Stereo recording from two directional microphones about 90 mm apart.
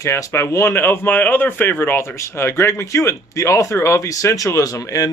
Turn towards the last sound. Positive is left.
turn(degrees=40)  # may be behind; listen again after turning